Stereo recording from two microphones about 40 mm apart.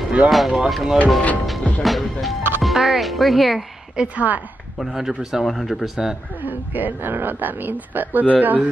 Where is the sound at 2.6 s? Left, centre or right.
Centre.